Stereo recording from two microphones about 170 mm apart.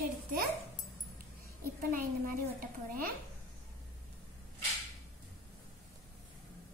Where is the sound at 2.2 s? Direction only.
55° right (ahead or behind).